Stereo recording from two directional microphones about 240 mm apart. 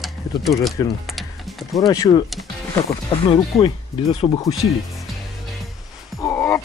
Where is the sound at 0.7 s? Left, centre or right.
Centre.